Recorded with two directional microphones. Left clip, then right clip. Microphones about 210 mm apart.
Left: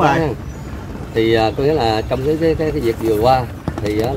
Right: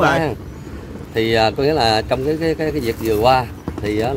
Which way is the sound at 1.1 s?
55° right (ahead or behind).